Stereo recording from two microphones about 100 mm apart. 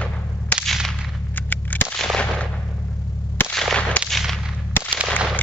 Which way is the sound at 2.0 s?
5° left (ahead or behind).